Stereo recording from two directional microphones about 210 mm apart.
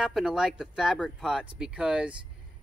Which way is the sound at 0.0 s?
Centre (ahead or behind).